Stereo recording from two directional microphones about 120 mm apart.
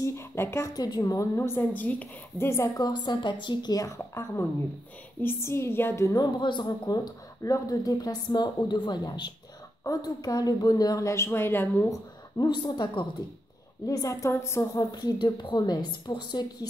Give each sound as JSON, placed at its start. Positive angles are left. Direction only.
{"t": 0.0, "sound": "speech", "side_deg": 20}
{"t": 0.7, "sound": "a woman's voice", "side_deg": 35}
{"t": 6.3, "sound": "a woman's voice", "side_deg": 40}
{"t": 12.4, "sound": "a woman's voice", "side_deg": 40}
{"t": 14.9, "sound": "speech", "side_deg": 35}